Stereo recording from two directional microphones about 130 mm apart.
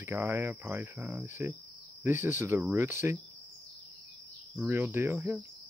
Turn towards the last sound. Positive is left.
turn(degrees=-20)  # may be behind; listen again after turning